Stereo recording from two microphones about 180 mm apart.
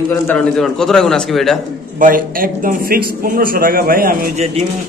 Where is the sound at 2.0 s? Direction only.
50° right (ahead or behind).